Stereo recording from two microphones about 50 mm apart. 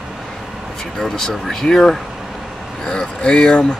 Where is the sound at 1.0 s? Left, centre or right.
Centre.